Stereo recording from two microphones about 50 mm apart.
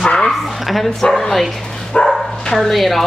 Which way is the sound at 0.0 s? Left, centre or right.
Centre.